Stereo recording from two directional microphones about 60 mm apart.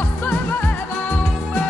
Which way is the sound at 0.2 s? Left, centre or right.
Left.